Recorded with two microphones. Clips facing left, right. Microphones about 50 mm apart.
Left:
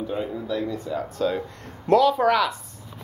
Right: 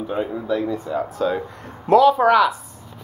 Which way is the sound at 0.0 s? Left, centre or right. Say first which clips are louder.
Right 3 dB; right.